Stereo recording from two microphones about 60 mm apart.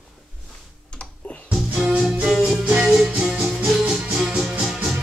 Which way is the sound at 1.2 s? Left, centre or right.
Left.